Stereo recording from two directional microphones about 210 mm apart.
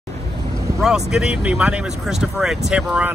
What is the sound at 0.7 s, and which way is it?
Speech, centre (ahead or behind).